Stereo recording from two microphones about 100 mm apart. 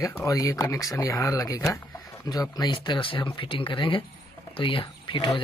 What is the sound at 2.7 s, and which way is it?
Speech, 55° left (ahead or behind).